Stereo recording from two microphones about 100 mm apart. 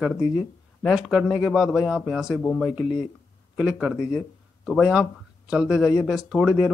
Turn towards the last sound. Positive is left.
turn(degrees=-5)  # may be behind; listen again after turning